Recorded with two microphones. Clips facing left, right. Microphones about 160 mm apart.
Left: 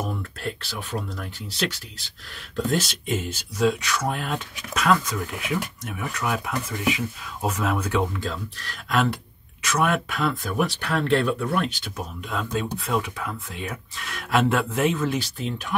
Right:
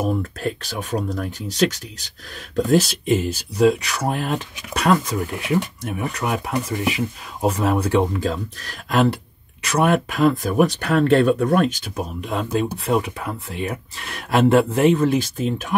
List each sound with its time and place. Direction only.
0.0 s speech: 40° right (ahead or behind)